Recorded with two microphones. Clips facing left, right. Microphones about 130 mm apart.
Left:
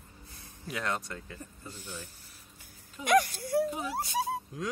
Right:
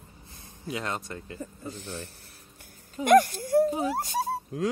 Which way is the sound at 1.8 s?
75° right (ahead or behind).